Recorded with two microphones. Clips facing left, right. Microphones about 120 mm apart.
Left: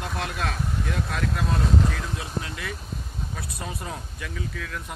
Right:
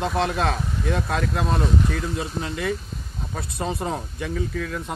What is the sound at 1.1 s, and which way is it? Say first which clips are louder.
Speech: right 4 dB; 45° right (ahead or behind).